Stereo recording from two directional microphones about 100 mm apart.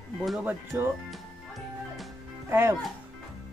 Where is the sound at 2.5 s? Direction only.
25° right (ahead or behind).